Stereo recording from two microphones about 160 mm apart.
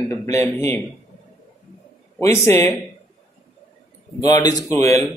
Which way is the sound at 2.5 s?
15° left (ahead or behind).